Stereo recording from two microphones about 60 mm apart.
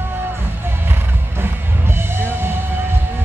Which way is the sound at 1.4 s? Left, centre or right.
Right.